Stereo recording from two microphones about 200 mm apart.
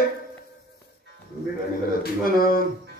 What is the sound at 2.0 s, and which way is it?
Speech, 45° left (ahead or behind).